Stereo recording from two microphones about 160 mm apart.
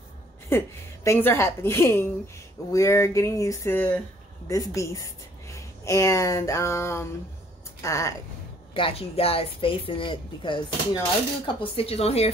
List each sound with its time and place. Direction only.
0.5 s a woman's voice: 15° left (ahead or behind)
8.7 s a woman's voice: 35° left (ahead or behind)